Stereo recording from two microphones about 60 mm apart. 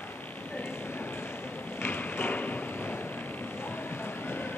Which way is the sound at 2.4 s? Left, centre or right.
Left.